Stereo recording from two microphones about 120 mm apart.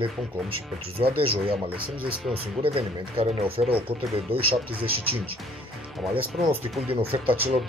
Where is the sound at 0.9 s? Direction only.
50° right (ahead or behind).